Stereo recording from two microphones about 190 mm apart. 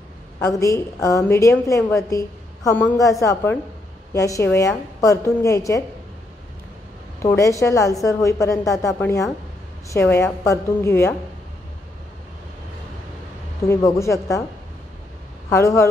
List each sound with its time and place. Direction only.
0.4 s a woman's voice: 15° left (ahead or behind)
7.2 s a woman's voice: 15° left (ahead or behind)
13.7 s a woman's voice: 15° left (ahead or behind)
15.5 s a woman's voice: 15° left (ahead or behind)